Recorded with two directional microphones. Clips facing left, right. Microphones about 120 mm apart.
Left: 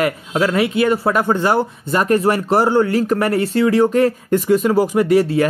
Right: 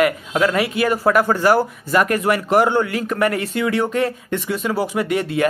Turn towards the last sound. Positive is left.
turn(degrees=35)  # may be behind; listen again after turning